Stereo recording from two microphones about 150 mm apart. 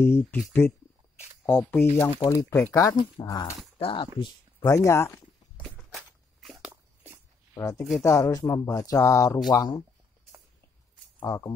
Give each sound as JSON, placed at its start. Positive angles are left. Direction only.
{"t": 0.0, "sound": "speech", "side_deg": 15}
{"t": 3.7, "sound": "speech", "side_deg": 35}
{"t": 4.6, "sound": "speech", "side_deg": 20}
{"t": 5.6, "sound": "walk", "side_deg": 0}
{"t": 6.6, "sound": "dog", "side_deg": -10}
{"t": 7.5, "sound": "speech", "side_deg": 20}
{"t": 11.1, "sound": "speech", "side_deg": 25}